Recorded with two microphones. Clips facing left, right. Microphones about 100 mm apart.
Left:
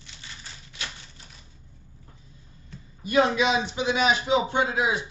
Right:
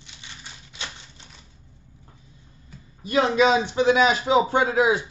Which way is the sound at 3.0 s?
35° right (ahead or behind).